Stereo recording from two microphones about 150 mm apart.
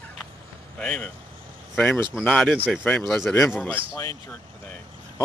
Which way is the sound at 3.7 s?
20° left (ahead or behind).